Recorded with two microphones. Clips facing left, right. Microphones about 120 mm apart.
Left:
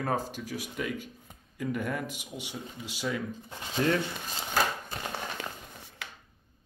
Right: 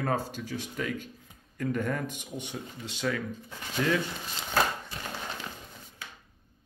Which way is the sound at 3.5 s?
35° left (ahead or behind).